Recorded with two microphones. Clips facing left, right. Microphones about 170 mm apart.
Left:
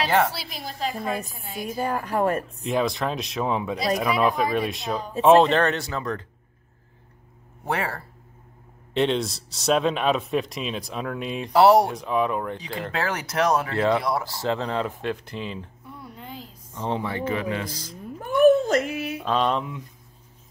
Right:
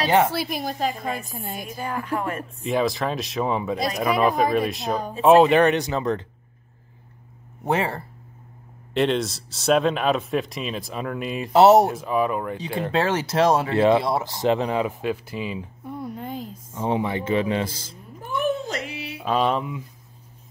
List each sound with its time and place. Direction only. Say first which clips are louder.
0.0 s speech: right 2 dB; 20° right (ahead or behind)
0.3 s a woman's voice: right 9 dB; 55° right (ahead or behind)
1.8 s speech: left 4 dB; 40° left (ahead or behind)
2.6 s speech: right 3 dB; centre (ahead or behind)
5.5 s speech: right 4 dB; 15° right (ahead or behind)
7.6 s speech: right 4 dB; 20° right (ahead or behind)
8.9 s speech: right 1 dB; centre (ahead or behind)
11.5 s speech: right 2 dB; 25° right (ahead or behind)
11.8 s speech: right 2 dB; centre (ahead or behind)
12.9 s speech: right 5 dB; 25° right (ahead or behind); by 15.7 s 10° right (ahead or behind)
15.8 s a sound: right 9 dB; 50° right (ahead or behind)
16.7 s speech: right 3 dB; 15° right (ahead or behind)
18.2 s a sound: left 8 dB; 50° left (ahead or behind)
19.2 s speech: right 2 dB; 5° right (ahead or behind)